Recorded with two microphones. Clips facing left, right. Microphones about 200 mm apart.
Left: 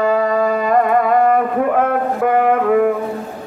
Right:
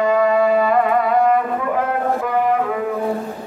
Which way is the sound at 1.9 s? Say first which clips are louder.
Left 4 dB; 60° left (ahead or behind).